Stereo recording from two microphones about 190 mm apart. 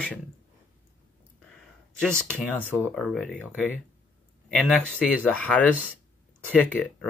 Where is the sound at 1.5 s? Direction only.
Centre (ahead or behind).